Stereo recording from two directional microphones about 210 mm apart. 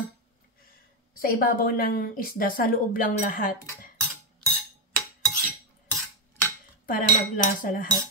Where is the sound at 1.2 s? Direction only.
45° left (ahead or behind).